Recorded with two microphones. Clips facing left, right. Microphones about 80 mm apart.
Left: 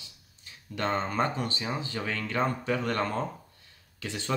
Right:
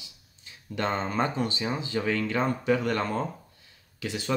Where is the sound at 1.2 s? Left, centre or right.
Centre.